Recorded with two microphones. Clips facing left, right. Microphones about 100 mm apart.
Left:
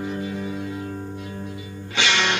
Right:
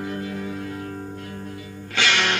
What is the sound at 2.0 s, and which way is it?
Music, 15° left (ahead or behind).